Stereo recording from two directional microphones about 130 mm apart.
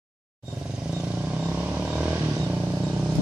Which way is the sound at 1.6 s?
10° right (ahead or behind).